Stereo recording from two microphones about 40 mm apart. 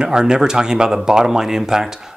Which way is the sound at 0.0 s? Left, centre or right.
Centre.